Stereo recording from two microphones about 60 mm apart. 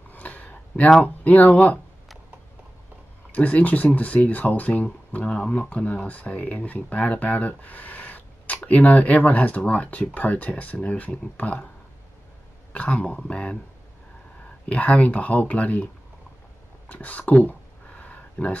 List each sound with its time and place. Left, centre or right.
0.1 s a sound: left
1.0 s speech: left
3.3 s speech: left
12.7 s speech: left
14.7 s speech: left
16.9 s a sound: left